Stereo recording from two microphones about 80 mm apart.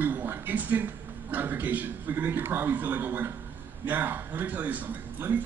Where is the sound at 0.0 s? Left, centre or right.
Right.